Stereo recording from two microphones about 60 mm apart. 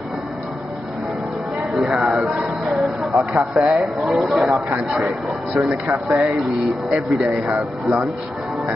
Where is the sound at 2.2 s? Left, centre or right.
Centre.